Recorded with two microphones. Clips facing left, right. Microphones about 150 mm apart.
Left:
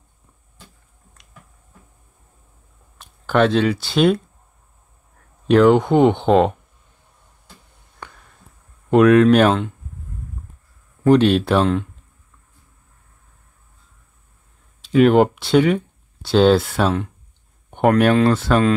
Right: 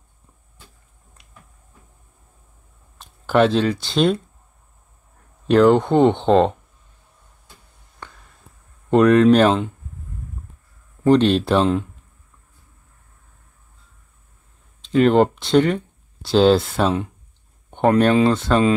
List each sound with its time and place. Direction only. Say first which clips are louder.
3.0 s speech: right 1 dB; centre (ahead or behind)
5.5 s speech: left 1 dB; centre (ahead or behind)
8.0 s a sound: left 1 dB; 15° left (ahead or behind)
8.9 s speech: left 1 dB; 5° left (ahead or behind)
11.1 s speech: left 1 dB; 5° left (ahead or behind)
14.8 s speech: left 2 dB; 5° left (ahead or behind)